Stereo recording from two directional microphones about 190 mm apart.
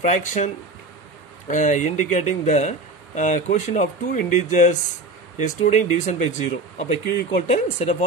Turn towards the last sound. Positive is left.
turn(degrees=35)  # may be behind; listen again after turning